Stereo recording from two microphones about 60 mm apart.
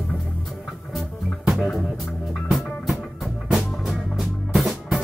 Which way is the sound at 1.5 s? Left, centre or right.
Centre.